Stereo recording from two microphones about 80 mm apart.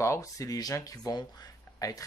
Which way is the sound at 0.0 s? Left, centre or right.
Left.